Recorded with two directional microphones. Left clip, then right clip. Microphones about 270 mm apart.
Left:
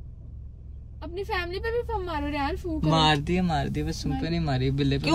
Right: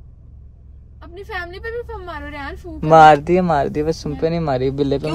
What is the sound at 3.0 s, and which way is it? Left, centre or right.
Speech, centre.